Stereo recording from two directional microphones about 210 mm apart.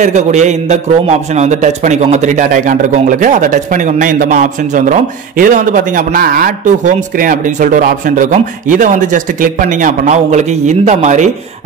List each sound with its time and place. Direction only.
0.0 s a man's voice: 35° right (ahead or behind)